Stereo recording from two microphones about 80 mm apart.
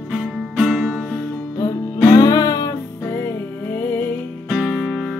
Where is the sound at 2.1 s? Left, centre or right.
Left.